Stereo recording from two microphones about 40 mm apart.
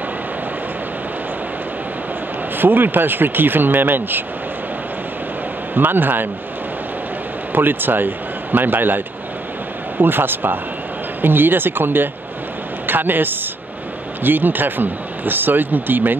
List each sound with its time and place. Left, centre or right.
2.5 s speech: right
5.8 s speech: right
7.5 s speech: right